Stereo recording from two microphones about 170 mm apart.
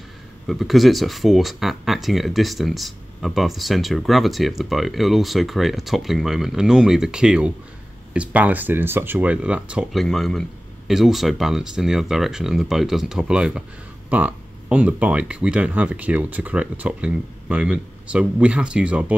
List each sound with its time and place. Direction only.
0.5 s speech: centre (ahead or behind)